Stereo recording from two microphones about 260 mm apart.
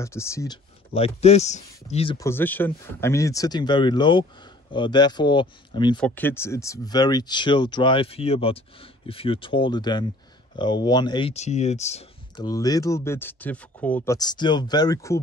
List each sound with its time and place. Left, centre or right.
0.0 s speech: centre
5.9 s speech: centre; by 12.4 s left
12.4 s speech: centre